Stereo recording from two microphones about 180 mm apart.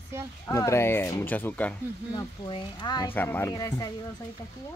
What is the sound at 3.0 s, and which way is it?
Speech, 10° left (ahead or behind).